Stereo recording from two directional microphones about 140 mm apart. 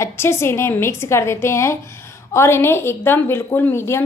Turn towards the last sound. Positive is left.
turn(degrees=15)  # may be behind; listen again after turning